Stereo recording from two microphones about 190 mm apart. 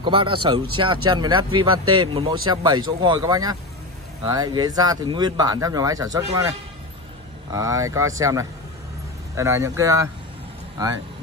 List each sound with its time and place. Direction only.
0.0 s speech: 25° right (ahead or behind)
7.5 s speech: 15° right (ahead or behind)